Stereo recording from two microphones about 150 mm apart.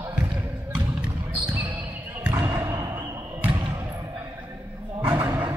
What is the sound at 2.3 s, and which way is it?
Basketball bounce, 35° right (ahead or behind).